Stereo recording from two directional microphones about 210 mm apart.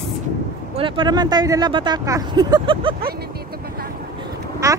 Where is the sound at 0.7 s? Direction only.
25° right (ahead or behind).